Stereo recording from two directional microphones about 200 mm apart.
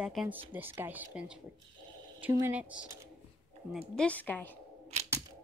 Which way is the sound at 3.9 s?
5° left (ahead or behind).